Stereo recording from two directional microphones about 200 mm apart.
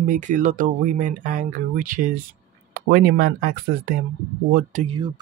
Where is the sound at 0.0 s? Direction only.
40° right (ahead or behind).